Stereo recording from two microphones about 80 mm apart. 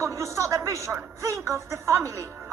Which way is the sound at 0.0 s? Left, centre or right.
Right.